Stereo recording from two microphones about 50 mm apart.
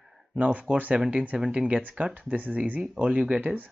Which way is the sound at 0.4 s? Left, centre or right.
Right.